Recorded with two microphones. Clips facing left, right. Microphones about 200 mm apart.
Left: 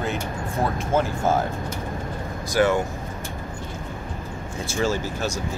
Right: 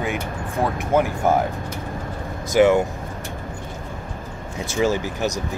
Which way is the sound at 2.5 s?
15° right (ahead or behind).